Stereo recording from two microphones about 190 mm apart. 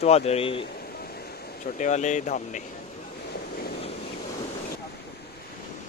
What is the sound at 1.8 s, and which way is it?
Speech, 40° left (ahead or behind).